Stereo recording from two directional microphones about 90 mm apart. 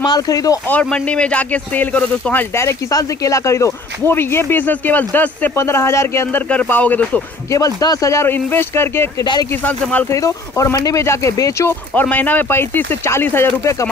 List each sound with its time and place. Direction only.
0.0 s speech: 45° left (ahead or behind)
0.8 s speech: 10° left (ahead or behind)
2.5 s speech: 35° left (ahead or behind); by 5.5 s 20° left (ahead or behind)
5.6 s speech: 30° left (ahead or behind)
6.5 s speech: 15° left (ahead or behind)
7.5 s speech: 45° left (ahead or behind); by 9.1 s 30° left (ahead or behind)
9.2 s speech: 55° left (ahead or behind)
9.5 s speech: 20° left (ahead or behind)
10.0 s speech: 35° left (ahead or behind)
11.9 s speech: 20° left (ahead or behind)